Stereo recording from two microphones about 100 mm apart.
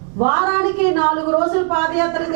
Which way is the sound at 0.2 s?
15° right (ahead or behind).